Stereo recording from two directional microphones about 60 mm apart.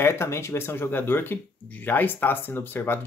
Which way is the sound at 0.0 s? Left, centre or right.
Left.